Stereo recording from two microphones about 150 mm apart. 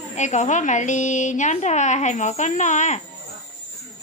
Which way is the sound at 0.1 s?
50° left (ahead or behind).